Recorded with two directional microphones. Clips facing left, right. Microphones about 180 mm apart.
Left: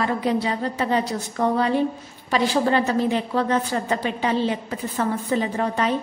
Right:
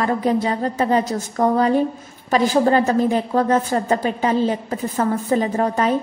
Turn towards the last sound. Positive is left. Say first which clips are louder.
# right 4 dB
turn(degrees=-45)  # may be behind; listen again after turning